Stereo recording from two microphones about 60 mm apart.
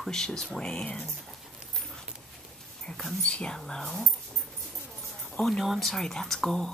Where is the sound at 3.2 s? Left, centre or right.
Centre.